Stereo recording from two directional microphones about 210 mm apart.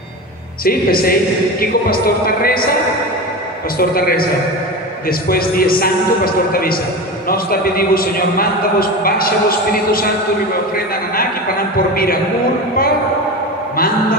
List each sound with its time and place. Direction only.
0.7 s a man's voice: 45° left (ahead or behind)
3.7 s a man's voice: 45° left (ahead or behind)
11.9 s a man's voice: 45° left (ahead or behind)